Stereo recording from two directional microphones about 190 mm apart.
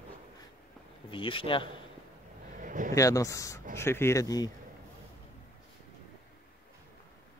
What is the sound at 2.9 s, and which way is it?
Speech, 15° left (ahead or behind).